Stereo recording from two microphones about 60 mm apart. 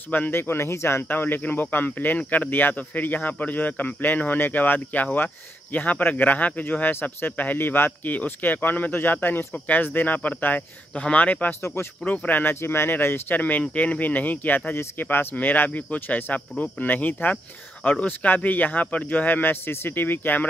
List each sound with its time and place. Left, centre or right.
0.3 s speech: left
1.0 s speech: left
11.6 s speech: left
12.0 s speech: left
12.5 s speech: left